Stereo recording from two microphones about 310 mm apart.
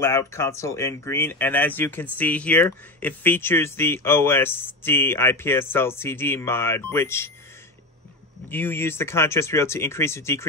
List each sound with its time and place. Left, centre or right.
0.0 s speech: centre
8.5 s speech: centre